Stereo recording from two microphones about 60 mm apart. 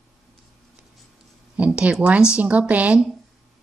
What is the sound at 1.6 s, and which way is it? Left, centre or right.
Speech, right.